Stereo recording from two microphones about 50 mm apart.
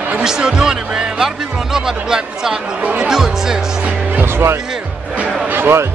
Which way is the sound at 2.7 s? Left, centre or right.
Right.